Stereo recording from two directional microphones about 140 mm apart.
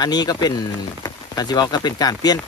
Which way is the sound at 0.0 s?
30° left (ahead or behind).